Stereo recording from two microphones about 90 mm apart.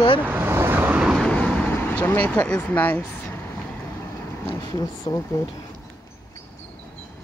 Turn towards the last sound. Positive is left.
turn(degrees=30)  # may be behind; listen again after turning